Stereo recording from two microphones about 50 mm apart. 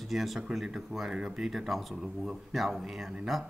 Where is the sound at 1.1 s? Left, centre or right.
Centre.